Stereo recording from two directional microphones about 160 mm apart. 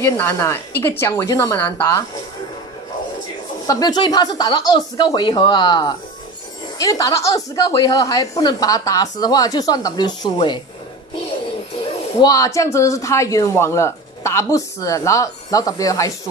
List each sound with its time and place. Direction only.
0.0 s a woman's voice: 15° left (ahead or behind)
3.6 s speech: 25° left (ahead or behind)
12.2 s speech: 20° left (ahead or behind)